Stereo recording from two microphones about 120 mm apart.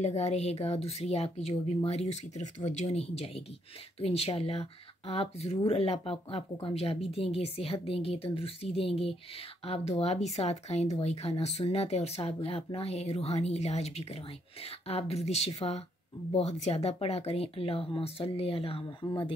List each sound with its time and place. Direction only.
0.0 s speech: 65° left (ahead or behind); by 19.3 s 45° left (ahead or behind)